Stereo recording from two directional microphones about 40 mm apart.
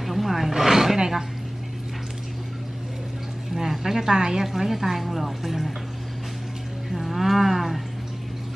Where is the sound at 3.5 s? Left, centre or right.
Centre.